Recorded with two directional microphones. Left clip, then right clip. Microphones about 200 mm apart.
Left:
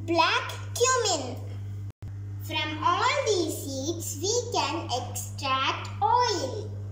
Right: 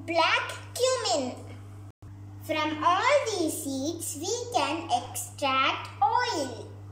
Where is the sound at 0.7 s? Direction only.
25° right (ahead or behind).